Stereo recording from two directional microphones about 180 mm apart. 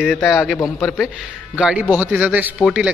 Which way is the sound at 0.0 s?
Centre (ahead or behind).